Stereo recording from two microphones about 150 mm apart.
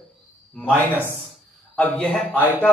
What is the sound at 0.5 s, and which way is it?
A man's voice, 15° left (ahead or behind).